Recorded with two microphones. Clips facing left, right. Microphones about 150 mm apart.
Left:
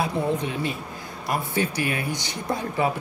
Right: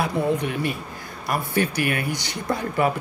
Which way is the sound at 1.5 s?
65° right (ahead or behind).